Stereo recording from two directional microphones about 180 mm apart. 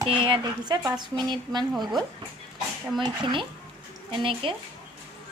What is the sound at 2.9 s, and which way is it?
Speech, 25° right (ahead or behind).